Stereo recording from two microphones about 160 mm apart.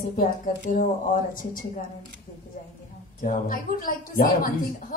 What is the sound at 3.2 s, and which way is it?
A woman's voice, 60° left (ahead or behind).